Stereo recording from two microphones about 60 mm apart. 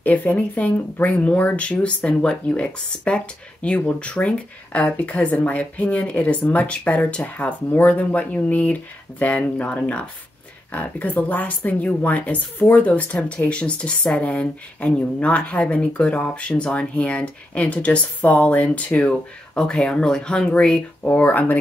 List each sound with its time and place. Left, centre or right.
0.0 s speech: left